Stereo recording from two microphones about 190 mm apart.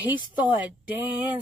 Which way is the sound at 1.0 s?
10° right (ahead or behind).